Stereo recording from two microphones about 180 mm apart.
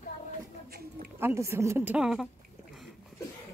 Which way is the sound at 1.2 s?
15° right (ahead or behind).